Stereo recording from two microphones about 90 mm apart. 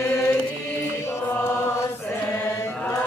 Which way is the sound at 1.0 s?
25° left (ahead or behind).